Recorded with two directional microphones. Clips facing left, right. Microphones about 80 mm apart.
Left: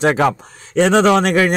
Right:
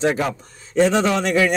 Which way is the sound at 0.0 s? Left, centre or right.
Left.